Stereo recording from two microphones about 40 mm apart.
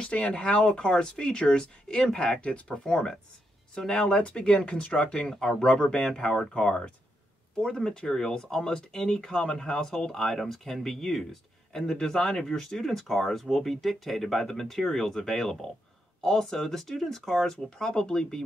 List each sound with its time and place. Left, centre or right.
0.0 s speech: left
2.8 s speech: centre
4.2 s speech: left
5.7 s speech: left